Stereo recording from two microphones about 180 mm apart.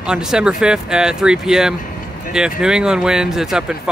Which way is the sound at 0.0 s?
5° right (ahead or behind).